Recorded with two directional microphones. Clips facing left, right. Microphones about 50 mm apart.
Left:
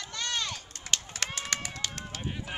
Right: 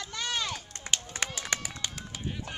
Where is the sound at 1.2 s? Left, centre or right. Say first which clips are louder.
Right 1 dB; centre.